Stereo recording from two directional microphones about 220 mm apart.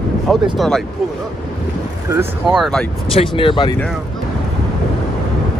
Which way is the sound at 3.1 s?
20° left (ahead or behind).